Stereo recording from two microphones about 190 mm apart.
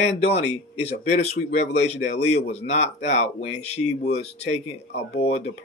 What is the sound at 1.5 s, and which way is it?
Speech, 35° left (ahead or behind).